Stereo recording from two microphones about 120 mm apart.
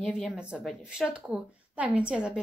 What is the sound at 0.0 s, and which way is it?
A woman's voice, 5° right (ahead or behind).